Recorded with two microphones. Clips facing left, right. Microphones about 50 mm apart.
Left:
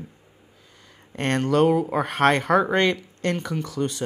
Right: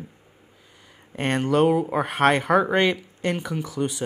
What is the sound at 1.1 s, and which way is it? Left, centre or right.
Speech, centre.